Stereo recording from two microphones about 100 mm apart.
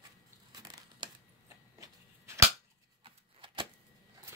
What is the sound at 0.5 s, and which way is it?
Crumpling, 45° right (ahead or behind).